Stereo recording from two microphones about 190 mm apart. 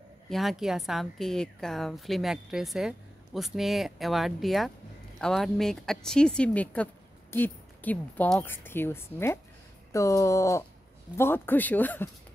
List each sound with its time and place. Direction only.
0.3 s a woman's voice: centre (ahead or behind)